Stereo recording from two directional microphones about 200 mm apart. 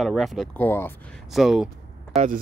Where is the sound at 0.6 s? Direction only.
10° left (ahead or behind).